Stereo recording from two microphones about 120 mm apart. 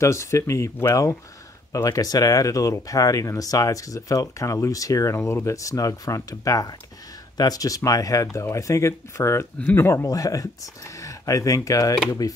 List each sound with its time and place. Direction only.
0.0 s speech: 25° left (ahead or behind)